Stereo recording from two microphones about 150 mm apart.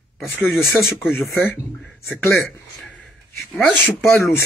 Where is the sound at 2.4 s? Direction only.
Centre (ahead or behind).